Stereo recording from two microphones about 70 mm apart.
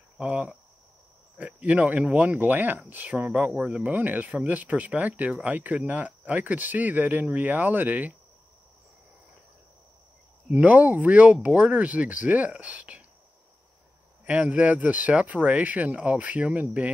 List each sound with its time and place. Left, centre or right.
0.2 s speech: centre
3.9 s speech: right
10.5 s speech: right
14.2 s speech: centre